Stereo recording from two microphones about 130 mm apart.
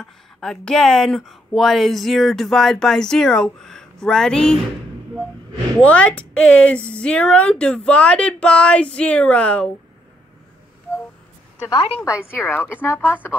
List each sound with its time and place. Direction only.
0.0 s speech: 5° left (ahead or behind)
5.8 s speech: 10° left (ahead or behind)
11.7 s a woman's voice: 40° left (ahead or behind)
12.3 s speech: 15° left (ahead or behind)